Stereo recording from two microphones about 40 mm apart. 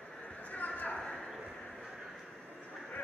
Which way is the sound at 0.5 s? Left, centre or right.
Left.